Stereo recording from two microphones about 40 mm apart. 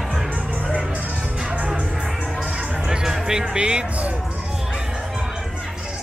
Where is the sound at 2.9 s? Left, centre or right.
Centre.